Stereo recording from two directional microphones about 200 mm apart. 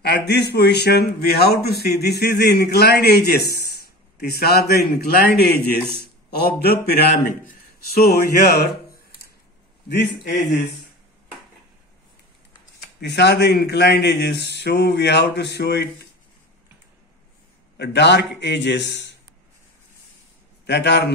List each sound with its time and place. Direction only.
0.0 s a man's voice: 55° left (ahead or behind)
9.8 s a man's voice: 60° left (ahead or behind)
13.0 s a man's voice: 55° left (ahead or behind)
17.7 s a man's voice: 60° left (ahead or behind)
20.6 s a man's voice: 60° left (ahead or behind)